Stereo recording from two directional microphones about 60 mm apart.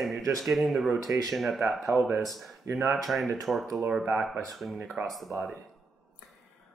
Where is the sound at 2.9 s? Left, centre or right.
Centre.